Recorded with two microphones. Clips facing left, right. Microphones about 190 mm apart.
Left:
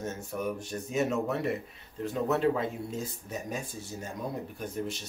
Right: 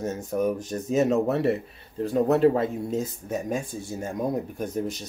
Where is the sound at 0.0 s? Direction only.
40° right (ahead or behind).